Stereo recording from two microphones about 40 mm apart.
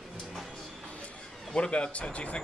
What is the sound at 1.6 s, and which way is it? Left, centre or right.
Speech, left.